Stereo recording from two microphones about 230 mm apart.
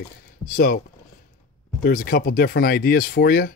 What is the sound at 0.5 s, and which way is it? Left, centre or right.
Speech, left.